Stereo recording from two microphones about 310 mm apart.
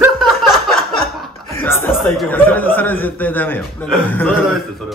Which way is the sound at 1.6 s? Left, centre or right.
Centre.